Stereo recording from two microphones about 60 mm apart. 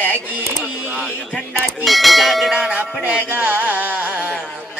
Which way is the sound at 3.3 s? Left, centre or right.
Right.